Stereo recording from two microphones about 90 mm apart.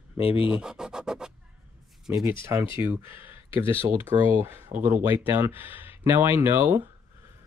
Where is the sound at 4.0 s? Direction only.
40° right (ahead or behind).